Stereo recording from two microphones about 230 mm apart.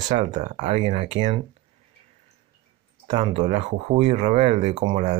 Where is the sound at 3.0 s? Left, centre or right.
Right.